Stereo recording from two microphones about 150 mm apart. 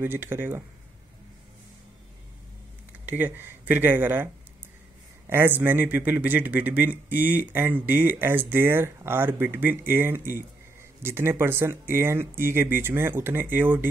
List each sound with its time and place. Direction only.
0.0 s a man's voice: 15° right (ahead or behind)
2.9 s a man's voice: 10° right (ahead or behind)